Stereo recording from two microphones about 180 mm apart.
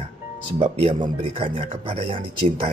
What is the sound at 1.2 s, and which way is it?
Speech, 30° right (ahead or behind).